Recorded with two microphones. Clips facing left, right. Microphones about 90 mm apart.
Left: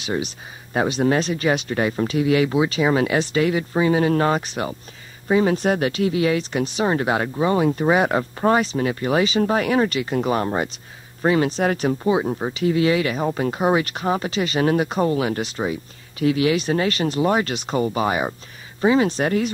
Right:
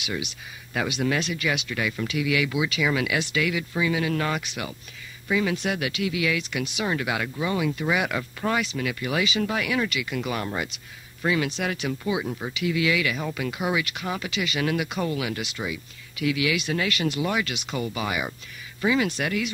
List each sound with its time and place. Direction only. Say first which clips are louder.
0.0 s speech: left 7 dB; 35° left (ahead or behind)